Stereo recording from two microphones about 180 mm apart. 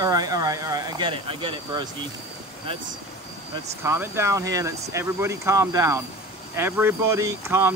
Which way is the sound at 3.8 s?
15° right (ahead or behind).